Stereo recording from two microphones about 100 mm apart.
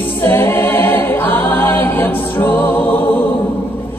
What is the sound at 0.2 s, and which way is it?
A capella, 20° left (ahead or behind).